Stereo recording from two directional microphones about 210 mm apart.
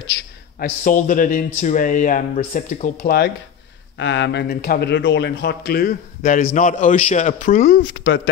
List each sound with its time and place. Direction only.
0.1 s a man's voice: 40° left (ahead or behind)
4.0 s speech: 55° left (ahead or behind)